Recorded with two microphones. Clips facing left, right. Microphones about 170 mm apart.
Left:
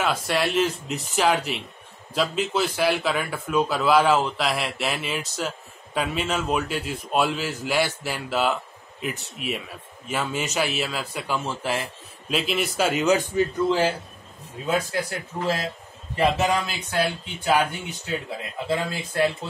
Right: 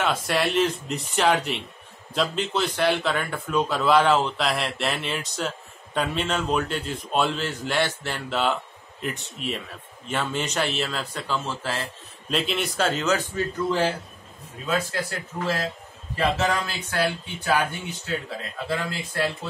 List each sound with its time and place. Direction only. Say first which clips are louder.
0.0 s speech: even; centre (ahead or behind); by 11.9 s 15° left (ahead or behind)
12.3 s speech: left 1 dB; 5° left (ahead or behind); by 19.3 s 20° left (ahead or behind)